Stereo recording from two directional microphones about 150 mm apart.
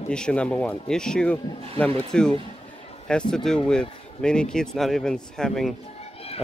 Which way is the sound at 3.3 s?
5° left (ahead or behind).